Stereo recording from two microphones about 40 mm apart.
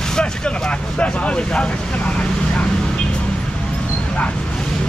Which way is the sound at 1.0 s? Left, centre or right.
Left.